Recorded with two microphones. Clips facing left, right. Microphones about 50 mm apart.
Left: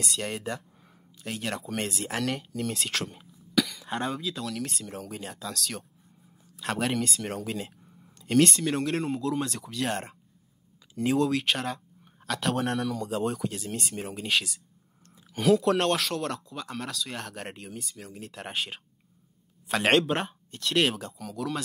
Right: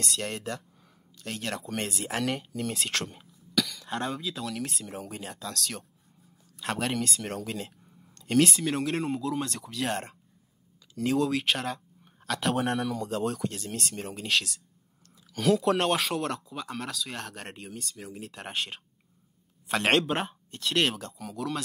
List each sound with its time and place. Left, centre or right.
0.0 s speech: centre
3.5 s speech: centre